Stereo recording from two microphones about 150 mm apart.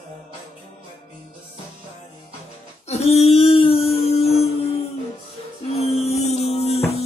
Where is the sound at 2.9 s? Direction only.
45° left (ahead or behind).